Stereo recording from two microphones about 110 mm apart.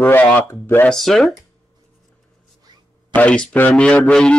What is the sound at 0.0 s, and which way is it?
Speech, 15° left (ahead or behind).